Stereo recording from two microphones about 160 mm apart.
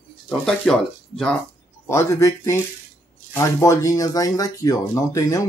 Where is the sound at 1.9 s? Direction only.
15° left (ahead or behind).